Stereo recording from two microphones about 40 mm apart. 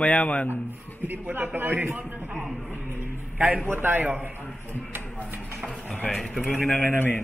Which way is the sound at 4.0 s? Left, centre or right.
Right.